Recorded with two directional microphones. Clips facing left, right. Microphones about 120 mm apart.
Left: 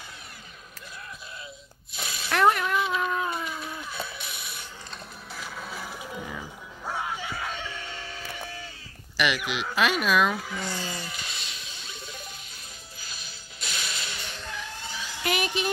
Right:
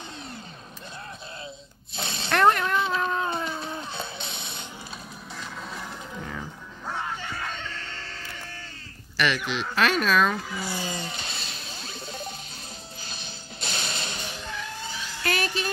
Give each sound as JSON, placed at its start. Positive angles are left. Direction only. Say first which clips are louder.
{"t": 2.0, "sound": "snake", "louder": "right 3 dB", "side_deg": -30}
{"t": 2.3, "sound": "a sound", "louder": "right 1 dB", "side_deg": 5}
{"t": 2.8, "sound": "cat", "louder": "right 1 dB", "side_deg": -30}
{"t": 5.4, "sound": "music", "louder": "even", "side_deg": 5}
{"t": 6.9, "sound": "screaming", "louder": "even", "side_deg": 10}
{"t": 9.1, "sound": "speech", "louder": "right 1 dB", "side_deg": 10}
{"t": 10.5, "sound": "a sound", "louder": "right 1 dB", "side_deg": -10}
{"t": 13.0, "sound": "music", "louder": "right 4 dB", "side_deg": -30}
{"t": 15.2, "sound": "a sound", "louder": "even", "side_deg": 15}